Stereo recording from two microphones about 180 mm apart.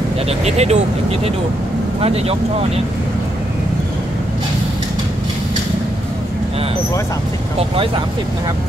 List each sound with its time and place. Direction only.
0.3 s speech: 35° right (ahead or behind)
7.5 s speech: 30° right (ahead or behind)